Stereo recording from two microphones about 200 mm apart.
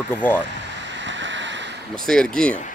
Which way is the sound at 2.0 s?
5° left (ahead or behind).